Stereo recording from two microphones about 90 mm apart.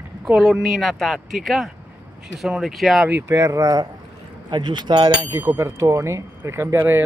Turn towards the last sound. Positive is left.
turn(degrees=-25)  # may be behind; listen again after turning